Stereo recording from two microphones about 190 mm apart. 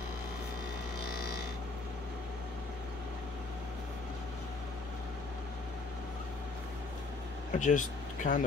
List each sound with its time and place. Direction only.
7.5 s speech: 40° left (ahead or behind)